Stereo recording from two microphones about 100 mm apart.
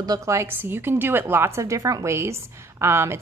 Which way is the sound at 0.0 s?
35° right (ahead or behind).